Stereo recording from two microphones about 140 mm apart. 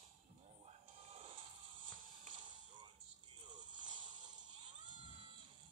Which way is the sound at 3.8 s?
35° right (ahead or behind).